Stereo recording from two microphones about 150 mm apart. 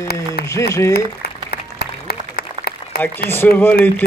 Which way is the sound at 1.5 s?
90° left.